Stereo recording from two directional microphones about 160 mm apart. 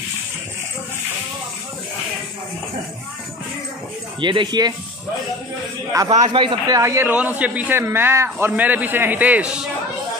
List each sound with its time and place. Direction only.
4.2 s speech: 30° right (ahead or behind)
6.0 s a man's voice: 30° right (ahead or behind)
6.8 s a man's voice: 15° right (ahead or behind)